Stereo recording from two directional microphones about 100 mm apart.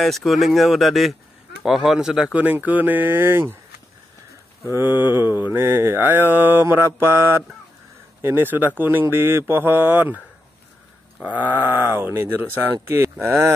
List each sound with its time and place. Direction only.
0.0 s speech: centre (ahead or behind); by 3.5 s 20° right (ahead or behind)
4.7 s mantra: 20° right (ahead or behind)
11.2 s mantra: 15° right (ahead or behind)